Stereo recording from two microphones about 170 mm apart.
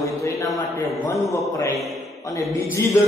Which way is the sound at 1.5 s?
20° left (ahead or behind).